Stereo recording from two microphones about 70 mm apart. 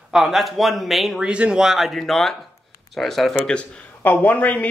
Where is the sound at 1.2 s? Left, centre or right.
Centre.